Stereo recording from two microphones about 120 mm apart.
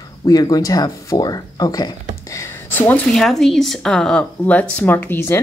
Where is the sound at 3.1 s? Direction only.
Centre (ahead or behind).